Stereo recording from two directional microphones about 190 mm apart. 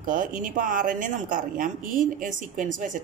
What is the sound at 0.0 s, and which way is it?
Speech, 45° right (ahead or behind).